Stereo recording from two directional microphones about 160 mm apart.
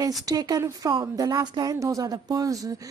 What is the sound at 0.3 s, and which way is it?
Speech, 25° right (ahead or behind).